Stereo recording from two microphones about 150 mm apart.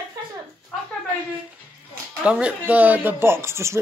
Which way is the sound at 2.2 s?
10° right (ahead or behind).